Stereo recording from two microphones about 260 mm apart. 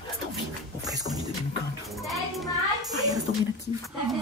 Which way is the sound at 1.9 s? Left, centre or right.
Centre.